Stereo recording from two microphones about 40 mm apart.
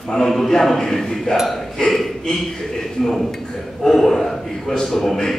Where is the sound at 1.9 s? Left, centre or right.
Centre.